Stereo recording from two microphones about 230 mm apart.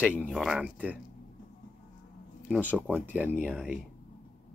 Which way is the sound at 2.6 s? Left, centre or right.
Centre.